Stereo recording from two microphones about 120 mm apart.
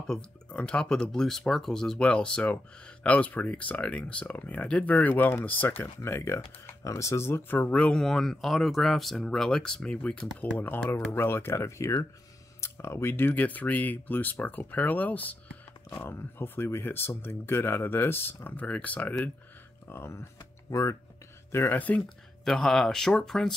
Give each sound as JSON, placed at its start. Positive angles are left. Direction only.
{"t": 0.0, "sound": "speech", "side_deg": 10}
{"t": 21.5, "sound": "speech", "side_deg": 20}